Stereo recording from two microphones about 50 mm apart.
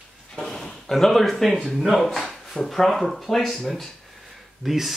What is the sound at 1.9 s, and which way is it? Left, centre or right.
Speech, centre.